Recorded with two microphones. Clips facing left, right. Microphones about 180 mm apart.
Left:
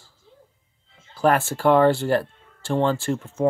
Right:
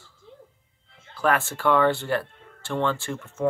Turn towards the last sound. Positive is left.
turn(degrees=35)  # may be behind; listen again after turning